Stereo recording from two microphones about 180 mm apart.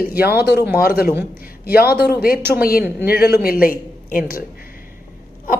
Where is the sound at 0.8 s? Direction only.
60° left (ahead or behind).